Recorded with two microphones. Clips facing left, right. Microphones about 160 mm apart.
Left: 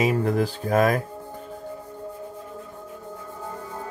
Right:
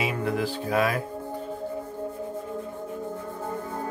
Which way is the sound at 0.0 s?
40° left (ahead or behind).